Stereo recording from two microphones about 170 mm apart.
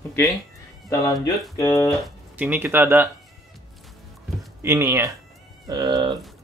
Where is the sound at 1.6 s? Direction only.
20° left (ahead or behind).